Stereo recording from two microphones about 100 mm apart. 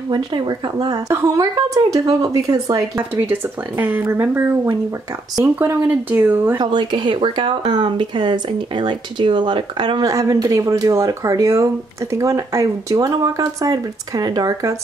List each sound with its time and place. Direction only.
0.1 s speech: 45° right (ahead or behind)
3.0 s speech: 15° right (ahead or behind)
6.6 s speech: 50° right (ahead or behind)
10.0 s speech: 35° right (ahead or behind)